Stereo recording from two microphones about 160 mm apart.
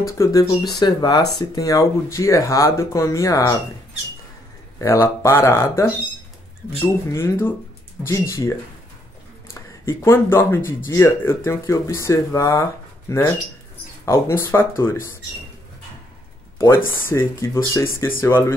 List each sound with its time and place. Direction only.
0.0 s speech: 20° left (ahead or behind)
4.7 s speech: 15° left (ahead or behind)
16.5 s speech: 15° left (ahead or behind)